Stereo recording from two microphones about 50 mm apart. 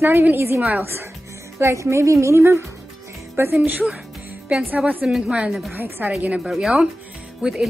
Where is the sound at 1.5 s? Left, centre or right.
Right.